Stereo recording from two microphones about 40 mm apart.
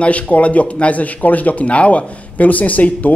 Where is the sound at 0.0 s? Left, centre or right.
Left.